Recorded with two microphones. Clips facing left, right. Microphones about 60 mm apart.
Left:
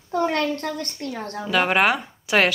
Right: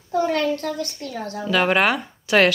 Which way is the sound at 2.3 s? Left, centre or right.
Centre.